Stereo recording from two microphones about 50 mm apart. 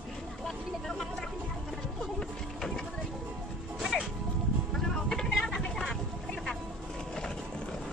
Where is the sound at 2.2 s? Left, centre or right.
Centre.